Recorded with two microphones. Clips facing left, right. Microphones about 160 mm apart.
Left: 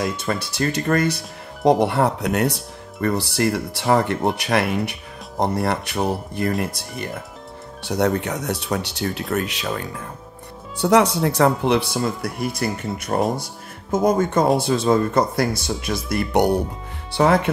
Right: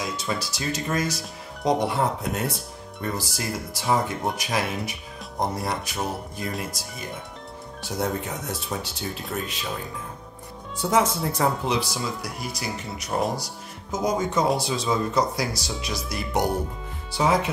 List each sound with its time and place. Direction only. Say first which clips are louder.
0.2 s speech: left 6 dB; 55° left (ahead or behind)
1.9 s speech: left 5 dB; 70° left (ahead or behind)
8.0 s speech: left 7 dB; 75° left (ahead or behind)
12.3 s speech: left 8 dB; centre (ahead or behind)
12.7 s speech: left 5 dB; 50° left (ahead or behind)